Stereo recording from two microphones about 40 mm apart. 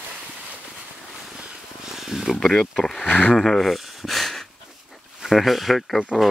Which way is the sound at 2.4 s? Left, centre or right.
Centre.